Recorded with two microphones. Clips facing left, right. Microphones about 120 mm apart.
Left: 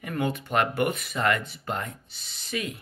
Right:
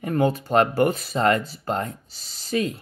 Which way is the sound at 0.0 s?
35° right (ahead or behind).